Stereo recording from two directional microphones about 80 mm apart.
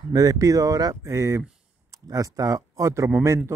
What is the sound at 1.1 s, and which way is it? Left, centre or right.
Speech, right.